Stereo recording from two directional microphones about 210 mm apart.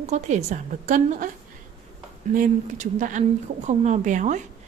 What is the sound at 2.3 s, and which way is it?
A woman's voice, 40° right (ahead or behind).